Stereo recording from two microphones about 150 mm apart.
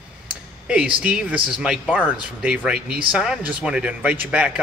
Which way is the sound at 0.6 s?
10° right (ahead or behind).